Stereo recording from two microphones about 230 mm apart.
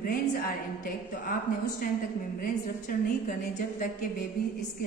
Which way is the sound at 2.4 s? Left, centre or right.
Left.